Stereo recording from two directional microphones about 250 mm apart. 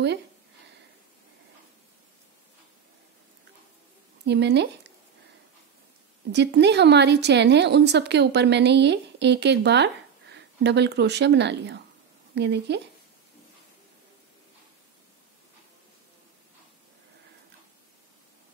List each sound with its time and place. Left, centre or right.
4.3 s a woman's voice: right
6.3 s a woman's voice: right